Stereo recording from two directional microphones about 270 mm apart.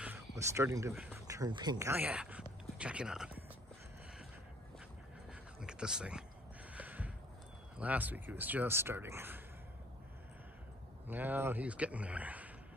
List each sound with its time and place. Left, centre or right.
0.0 s speech: centre
5.3 s a sound: centre
7.7 s speech: centre
11.1 s speech: centre